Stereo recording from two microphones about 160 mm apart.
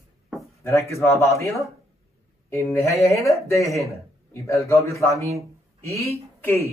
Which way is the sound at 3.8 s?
20° left (ahead or behind).